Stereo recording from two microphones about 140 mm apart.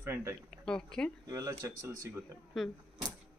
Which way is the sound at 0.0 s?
15° right (ahead or behind).